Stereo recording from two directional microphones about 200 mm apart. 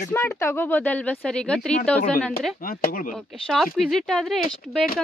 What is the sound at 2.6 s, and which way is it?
Speech, 45° left (ahead or behind).